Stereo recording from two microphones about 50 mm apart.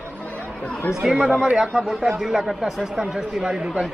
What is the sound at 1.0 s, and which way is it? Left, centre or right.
A man's voice, centre.